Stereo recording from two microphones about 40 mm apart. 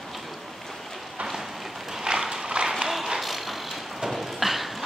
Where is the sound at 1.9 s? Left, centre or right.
Centre.